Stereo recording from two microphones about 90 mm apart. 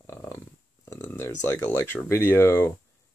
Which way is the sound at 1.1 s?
30° left (ahead or behind).